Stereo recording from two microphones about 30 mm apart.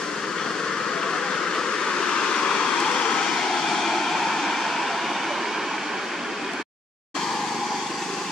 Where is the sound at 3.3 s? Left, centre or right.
Centre.